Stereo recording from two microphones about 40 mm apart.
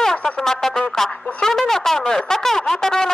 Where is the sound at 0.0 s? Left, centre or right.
Centre.